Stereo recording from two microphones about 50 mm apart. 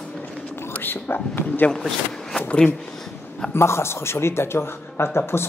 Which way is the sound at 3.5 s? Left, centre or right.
Left.